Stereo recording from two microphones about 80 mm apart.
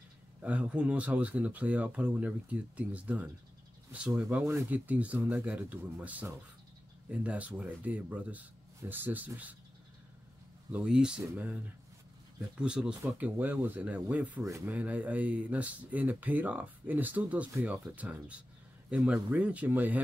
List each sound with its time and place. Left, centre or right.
0.4 s speech: centre
10.7 s speech: centre
12.5 s speech: centre
13.0 s speech: right